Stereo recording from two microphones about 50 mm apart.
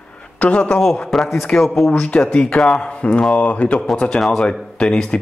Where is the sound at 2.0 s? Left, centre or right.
Centre.